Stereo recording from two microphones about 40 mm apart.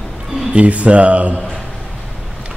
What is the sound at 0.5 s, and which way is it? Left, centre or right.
Speech, right.